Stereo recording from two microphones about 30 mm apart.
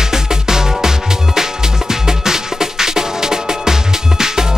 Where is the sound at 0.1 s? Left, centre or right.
Centre.